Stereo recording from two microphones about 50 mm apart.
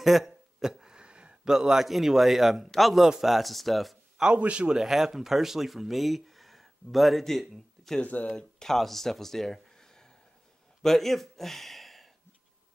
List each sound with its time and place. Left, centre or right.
0.0 s a sound: centre; by 1.5 s right
1.5 s a man's voice: centre
4.4 s speech: right
4.7 s speech: centre
8.0 s speech: left
8.4 s speech: centre